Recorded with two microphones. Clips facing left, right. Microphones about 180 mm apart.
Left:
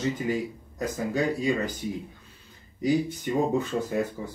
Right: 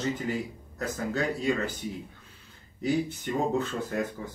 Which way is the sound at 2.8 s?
10° left (ahead or behind).